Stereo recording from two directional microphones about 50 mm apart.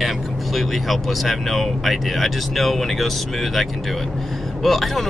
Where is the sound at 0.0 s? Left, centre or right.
Centre.